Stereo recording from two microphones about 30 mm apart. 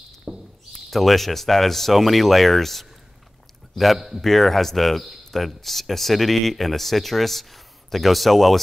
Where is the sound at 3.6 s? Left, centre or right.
Centre.